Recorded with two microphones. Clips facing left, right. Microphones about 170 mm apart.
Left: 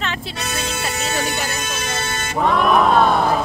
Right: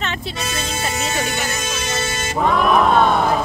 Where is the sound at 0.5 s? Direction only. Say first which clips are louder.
Left 1 dB; 65° left (ahead or behind).